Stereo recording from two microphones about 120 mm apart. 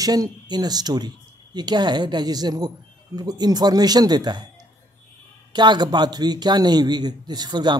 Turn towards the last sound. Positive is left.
turn(degrees=-40)  # may be behind; listen again after turning